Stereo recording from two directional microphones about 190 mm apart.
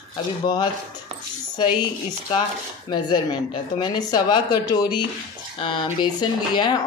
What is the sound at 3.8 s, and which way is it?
Speech, 20° left (ahead or behind).